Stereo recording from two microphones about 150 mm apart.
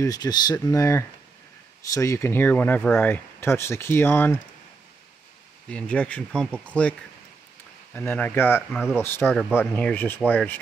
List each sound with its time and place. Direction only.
0.0 s speech: 25° left (ahead or behind)
5.7 s speech: 5° left (ahead or behind)